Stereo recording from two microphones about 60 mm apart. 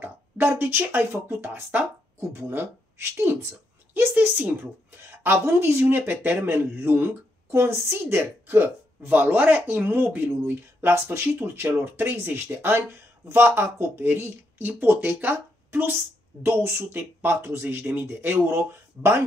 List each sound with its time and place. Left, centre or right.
0.0 s speech: right
2.4 s speech: right
11.6 s speech: right
14.8 s speech: right